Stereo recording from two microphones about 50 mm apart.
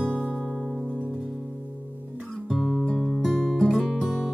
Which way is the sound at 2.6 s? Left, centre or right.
Centre.